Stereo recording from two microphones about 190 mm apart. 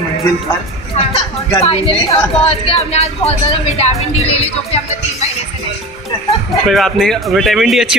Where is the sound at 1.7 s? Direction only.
30° left (ahead or behind).